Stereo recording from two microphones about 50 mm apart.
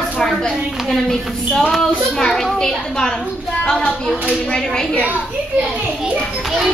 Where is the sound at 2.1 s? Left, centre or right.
Centre.